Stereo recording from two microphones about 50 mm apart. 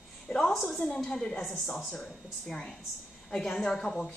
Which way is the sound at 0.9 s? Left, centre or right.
Centre.